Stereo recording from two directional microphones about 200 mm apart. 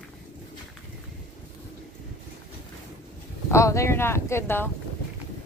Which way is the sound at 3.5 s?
15° left (ahead or behind).